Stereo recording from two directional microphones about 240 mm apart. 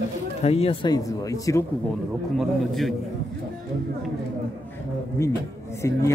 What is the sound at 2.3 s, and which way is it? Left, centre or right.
Speech, centre.